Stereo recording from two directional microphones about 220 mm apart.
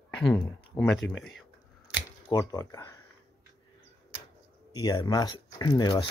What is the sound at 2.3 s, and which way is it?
Speech, 15° left (ahead or behind).